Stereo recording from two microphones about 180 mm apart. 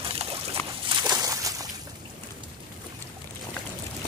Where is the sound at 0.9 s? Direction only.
20° right (ahead or behind).